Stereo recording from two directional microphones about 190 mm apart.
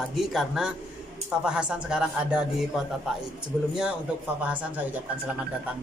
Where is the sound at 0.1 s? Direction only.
Centre (ahead or behind).